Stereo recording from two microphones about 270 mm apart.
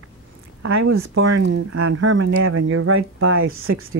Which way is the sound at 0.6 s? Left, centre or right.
Right.